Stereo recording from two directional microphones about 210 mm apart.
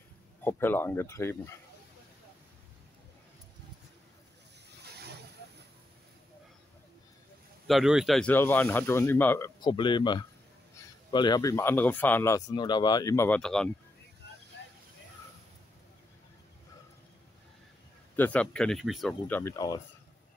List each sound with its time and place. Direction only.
0.4 s speech: 10° left (ahead or behind)
7.6 s speech: centre (ahead or behind)
9.6 s speech: 20° left (ahead or behind); by 13.7 s 5° left (ahead or behind)
14.6 s vehicle: 60° left (ahead or behind)
18.1 s speech: 5° left (ahead or behind)